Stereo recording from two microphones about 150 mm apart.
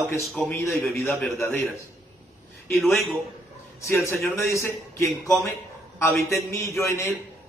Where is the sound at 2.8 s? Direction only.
Centre (ahead or behind).